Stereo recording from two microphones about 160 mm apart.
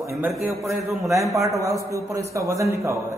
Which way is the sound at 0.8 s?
20° right (ahead or behind).